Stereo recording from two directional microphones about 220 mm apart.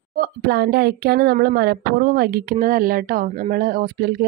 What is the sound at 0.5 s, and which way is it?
A woman's voice, 45° right (ahead or behind).